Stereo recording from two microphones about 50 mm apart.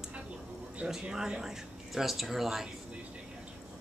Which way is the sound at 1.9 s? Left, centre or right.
Centre.